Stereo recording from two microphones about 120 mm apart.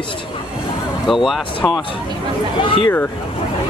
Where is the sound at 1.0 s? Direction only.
Centre (ahead or behind).